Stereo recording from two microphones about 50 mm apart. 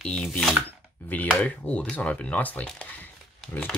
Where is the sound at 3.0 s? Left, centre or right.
Left.